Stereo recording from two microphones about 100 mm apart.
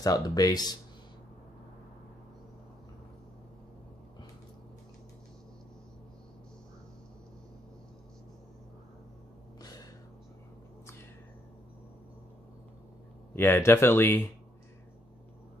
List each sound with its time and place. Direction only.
0.0 s speech: 40° left (ahead or behind)
13.3 s speech: 25° left (ahead or behind)